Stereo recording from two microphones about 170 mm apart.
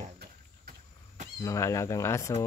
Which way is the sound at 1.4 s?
20° left (ahead or behind).